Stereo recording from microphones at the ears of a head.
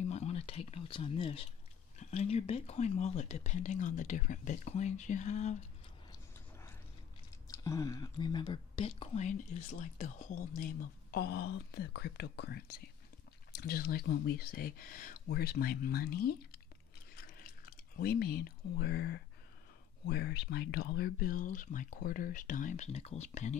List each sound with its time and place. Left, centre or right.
0.0 s whispering: left
2.0 s speech: left
7.4 s speech: left
17.1 s chewing: left
20.0 s speech: left